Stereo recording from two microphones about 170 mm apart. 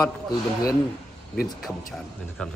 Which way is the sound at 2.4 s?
5° left (ahead or behind).